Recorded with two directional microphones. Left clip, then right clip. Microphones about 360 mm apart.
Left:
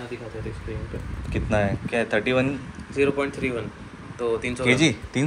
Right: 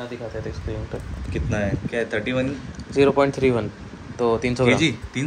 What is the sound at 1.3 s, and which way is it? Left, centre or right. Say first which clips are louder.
Speech: left 2 dB; centre.